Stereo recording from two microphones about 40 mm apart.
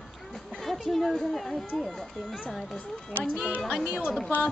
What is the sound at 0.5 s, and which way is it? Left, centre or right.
Speech, centre.